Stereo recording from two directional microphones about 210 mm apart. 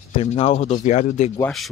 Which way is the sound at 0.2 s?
30° left (ahead or behind).